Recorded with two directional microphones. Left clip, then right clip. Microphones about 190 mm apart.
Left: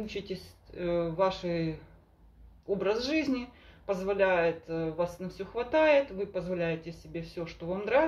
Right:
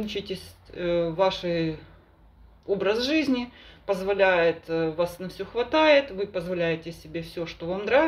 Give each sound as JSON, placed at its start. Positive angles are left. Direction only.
{"t": 0.0, "sound": "speech", "side_deg": -15}